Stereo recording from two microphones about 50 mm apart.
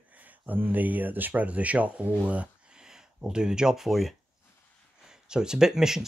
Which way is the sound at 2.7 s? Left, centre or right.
Centre.